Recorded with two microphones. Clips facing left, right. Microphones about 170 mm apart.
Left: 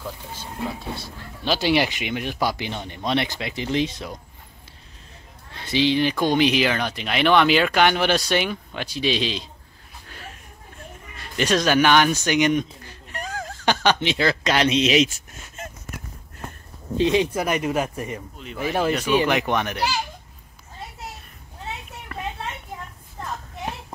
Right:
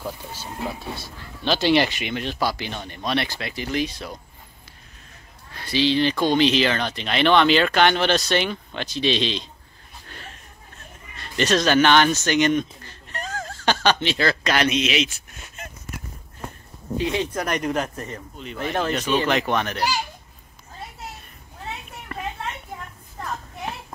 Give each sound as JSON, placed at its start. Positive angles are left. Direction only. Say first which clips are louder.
{"t": 0.9, "sound": "speech", "louder": "left 1 dB", "side_deg": 5}
{"t": 5.5, "sound": "speech", "louder": "left 1 dB", "side_deg": 20}
{"t": 10.0, "sound": "a sound", "louder": "left 1 dB", "side_deg": 5}
{"t": 11.1, "sound": "speech", "louder": "right 1 dB", "side_deg": 10}
{"t": 16.9, "sound": "speech", "louder": "left 5 dB", "side_deg": 25}
{"t": 17.2, "sound": "speech", "louder": "left 2 dB", "side_deg": 10}
{"t": 22.1, "sound": "a sound", "louder": "right 1 dB", "side_deg": 0}